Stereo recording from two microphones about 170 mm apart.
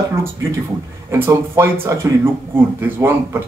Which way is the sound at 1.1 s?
15° right (ahead or behind).